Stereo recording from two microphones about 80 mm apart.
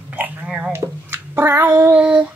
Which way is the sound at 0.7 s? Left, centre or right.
Right.